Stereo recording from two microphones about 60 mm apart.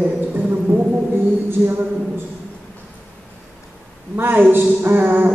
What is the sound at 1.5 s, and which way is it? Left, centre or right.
Speech, right.